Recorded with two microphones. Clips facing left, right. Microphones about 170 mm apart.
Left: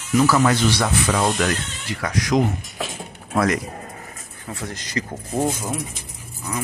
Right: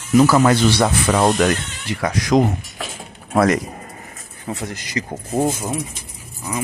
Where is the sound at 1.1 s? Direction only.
50° right (ahead or behind).